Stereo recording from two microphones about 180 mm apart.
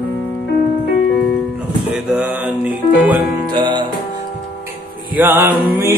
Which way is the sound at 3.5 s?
25° right (ahead or behind).